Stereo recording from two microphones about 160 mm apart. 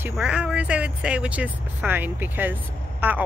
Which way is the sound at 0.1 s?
5° right (ahead or behind).